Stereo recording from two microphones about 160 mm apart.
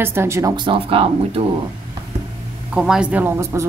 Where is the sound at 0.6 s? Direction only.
35° right (ahead or behind).